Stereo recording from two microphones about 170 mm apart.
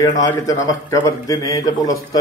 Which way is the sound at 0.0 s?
20° left (ahead or behind).